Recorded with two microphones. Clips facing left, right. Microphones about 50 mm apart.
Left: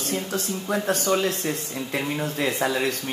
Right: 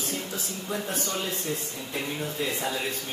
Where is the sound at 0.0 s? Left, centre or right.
Left.